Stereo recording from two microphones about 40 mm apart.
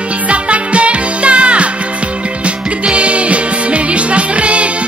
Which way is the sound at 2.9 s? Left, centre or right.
Right.